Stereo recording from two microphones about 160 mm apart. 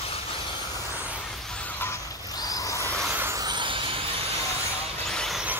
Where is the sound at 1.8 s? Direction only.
20° left (ahead or behind).